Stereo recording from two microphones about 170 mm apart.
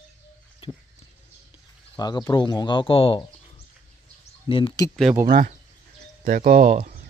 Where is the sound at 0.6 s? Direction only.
30° left (ahead or behind).